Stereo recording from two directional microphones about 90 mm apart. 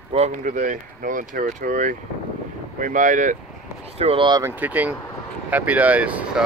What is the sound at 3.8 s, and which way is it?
Speech, 90° right.